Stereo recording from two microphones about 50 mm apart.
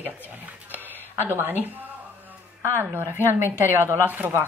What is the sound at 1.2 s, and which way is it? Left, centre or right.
Speech, right.